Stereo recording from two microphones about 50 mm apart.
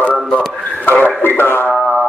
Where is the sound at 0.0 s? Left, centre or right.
Left.